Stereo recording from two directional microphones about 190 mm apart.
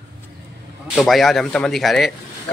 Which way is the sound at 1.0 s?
Centre (ahead or behind).